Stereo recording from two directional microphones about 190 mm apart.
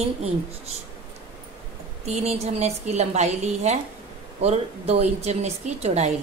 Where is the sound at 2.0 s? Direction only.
35° right (ahead or behind).